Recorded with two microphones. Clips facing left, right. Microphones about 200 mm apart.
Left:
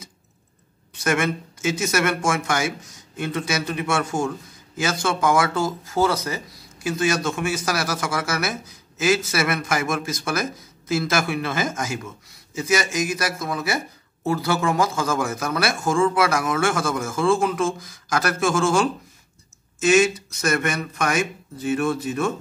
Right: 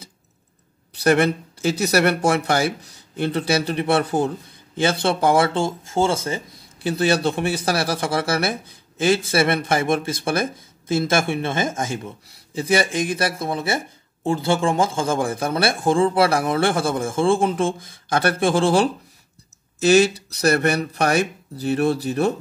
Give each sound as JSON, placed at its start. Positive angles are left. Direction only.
{"t": 0.9, "sound": "speech", "side_deg": -35}